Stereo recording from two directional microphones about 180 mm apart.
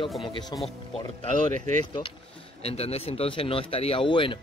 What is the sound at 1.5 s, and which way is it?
Speech, 45° right (ahead or behind).